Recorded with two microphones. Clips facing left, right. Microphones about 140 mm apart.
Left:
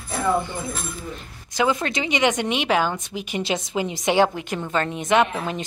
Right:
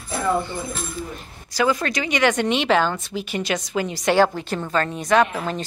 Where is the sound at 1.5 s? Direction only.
20° left (ahead or behind).